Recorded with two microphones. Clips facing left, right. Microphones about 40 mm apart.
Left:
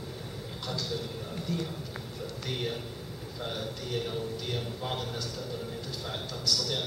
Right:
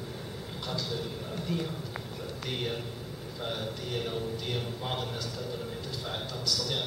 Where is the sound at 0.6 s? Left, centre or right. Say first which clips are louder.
Even; centre.